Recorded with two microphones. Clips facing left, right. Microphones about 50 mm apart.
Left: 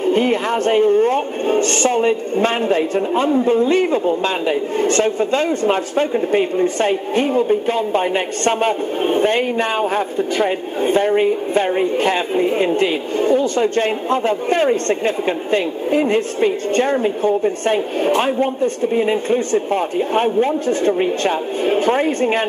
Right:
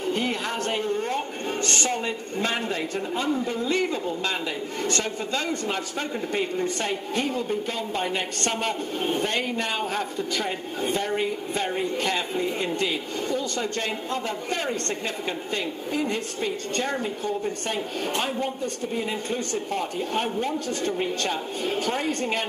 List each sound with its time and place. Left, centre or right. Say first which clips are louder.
0.0 s speech: left 10 dB; left